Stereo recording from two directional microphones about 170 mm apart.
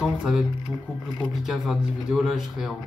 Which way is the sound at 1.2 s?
Centre (ahead or behind).